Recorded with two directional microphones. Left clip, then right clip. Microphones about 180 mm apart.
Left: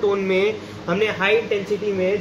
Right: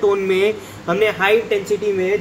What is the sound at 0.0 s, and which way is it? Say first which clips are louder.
A man's voice: right 3 dB; 20° right (ahead or behind).